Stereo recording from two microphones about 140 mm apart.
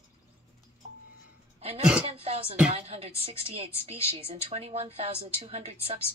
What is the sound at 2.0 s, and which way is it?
Music, 45° right (ahead or behind).